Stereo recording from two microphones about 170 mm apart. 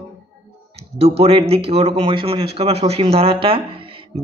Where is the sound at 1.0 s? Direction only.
35° right (ahead or behind).